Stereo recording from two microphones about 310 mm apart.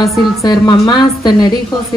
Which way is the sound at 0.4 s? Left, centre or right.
Centre.